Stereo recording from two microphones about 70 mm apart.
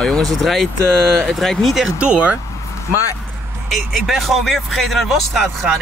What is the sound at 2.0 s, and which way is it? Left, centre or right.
Speech, centre.